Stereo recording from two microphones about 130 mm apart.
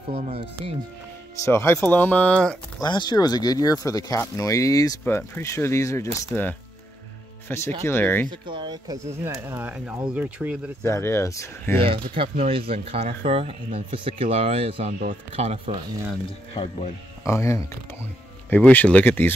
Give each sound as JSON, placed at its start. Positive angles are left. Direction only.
{"t": 0.1, "sound": "speech", "side_deg": -50}
{"t": 1.4, "sound": "speech", "side_deg": 20}
{"t": 2.8, "sound": "speech", "side_deg": 35}
{"t": 8.3, "sound": "speech", "side_deg": -35}
{"t": 10.8, "sound": "speech", "side_deg": 20}
{"t": 11.8, "sound": "speech", "side_deg": -45}
{"t": 17.3, "sound": "speech", "side_deg": 25}